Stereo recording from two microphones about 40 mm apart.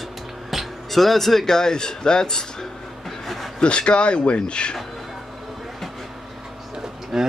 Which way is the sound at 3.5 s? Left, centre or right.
Left.